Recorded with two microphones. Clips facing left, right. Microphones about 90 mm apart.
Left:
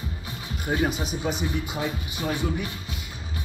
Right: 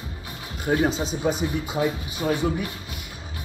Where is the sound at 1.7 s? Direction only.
5° right (ahead or behind).